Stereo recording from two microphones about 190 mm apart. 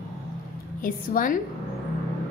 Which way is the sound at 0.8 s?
45° left (ahead or behind).